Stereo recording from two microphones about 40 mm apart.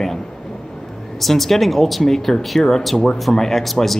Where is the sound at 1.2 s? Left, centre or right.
Centre.